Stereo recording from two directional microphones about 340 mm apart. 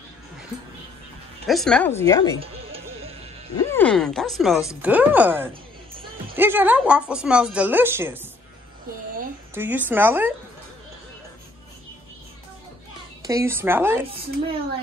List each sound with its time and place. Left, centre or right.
1.5 s speech: centre
2.4 s music: centre
3.5 s speech: centre
9.5 s speech: centre
13.2 s speech: centre